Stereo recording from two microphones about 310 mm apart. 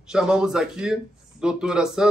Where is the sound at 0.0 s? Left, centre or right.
Centre.